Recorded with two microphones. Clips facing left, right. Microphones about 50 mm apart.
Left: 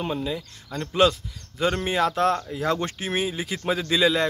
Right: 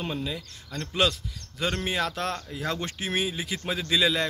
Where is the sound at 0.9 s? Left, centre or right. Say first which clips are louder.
Left 6 dB; left.